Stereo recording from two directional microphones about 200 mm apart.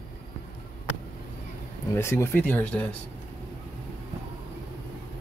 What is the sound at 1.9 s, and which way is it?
Speech, 15° left (ahead or behind).